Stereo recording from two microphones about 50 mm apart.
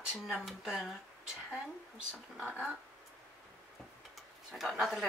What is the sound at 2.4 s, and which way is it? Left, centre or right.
Speech, left.